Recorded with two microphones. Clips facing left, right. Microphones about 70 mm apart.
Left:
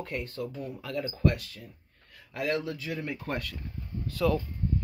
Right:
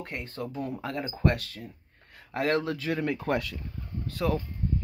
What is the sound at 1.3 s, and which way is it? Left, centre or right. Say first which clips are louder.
Speech: right 4 dB; right.